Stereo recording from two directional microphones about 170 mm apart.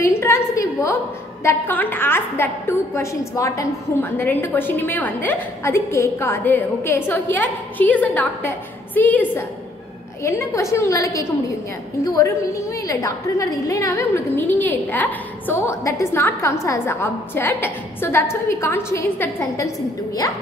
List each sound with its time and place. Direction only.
0.0 s a woman's voice: 15° left (ahead or behind)